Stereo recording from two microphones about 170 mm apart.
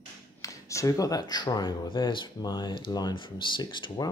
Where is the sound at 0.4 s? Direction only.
20° left (ahead or behind).